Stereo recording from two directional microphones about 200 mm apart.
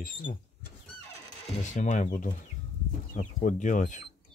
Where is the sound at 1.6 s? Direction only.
40° left (ahead or behind).